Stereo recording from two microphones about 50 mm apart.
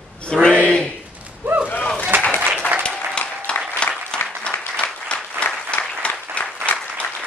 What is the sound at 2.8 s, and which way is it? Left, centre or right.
Applause, left.